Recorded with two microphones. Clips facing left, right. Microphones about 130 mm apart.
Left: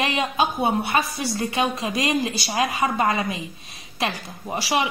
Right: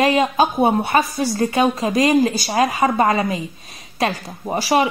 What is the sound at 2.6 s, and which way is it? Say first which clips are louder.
A woman's voice: right 5 dB; 30° right (ahead or behind).